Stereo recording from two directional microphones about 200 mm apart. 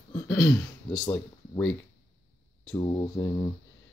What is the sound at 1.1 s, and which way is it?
Speech, 5° left (ahead or behind).